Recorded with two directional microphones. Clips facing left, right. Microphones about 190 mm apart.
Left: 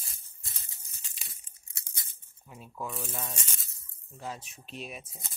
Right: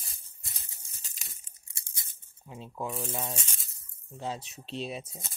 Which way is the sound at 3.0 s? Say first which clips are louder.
Right 4 dB; 20° right (ahead or behind).